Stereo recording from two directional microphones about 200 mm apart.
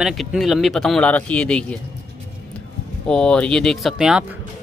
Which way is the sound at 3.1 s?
5° left (ahead or behind).